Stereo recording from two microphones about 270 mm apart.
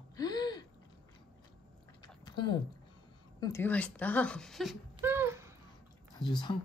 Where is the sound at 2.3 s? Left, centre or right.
Centre.